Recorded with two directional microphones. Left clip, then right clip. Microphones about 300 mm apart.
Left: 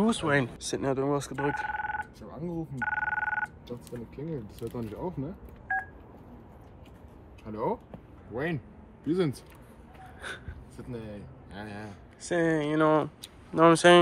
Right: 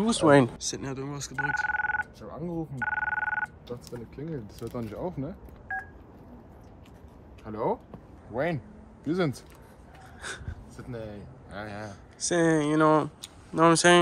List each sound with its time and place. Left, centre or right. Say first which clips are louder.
0.2 s speech: right 7 dB; right
0.7 s speech: left 7 dB; centre
2.3 s telephone bell ringing: right 1 dB; centre
3.9 s speech: left 2 dB; centre
7.4 s speech: right 2 dB; centre
9.0 s speech: even; centre